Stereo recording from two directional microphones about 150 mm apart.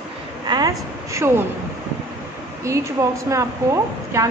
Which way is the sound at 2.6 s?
20° right (ahead or behind).